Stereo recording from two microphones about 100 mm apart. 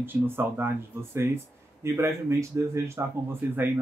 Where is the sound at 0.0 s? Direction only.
20° right (ahead or behind).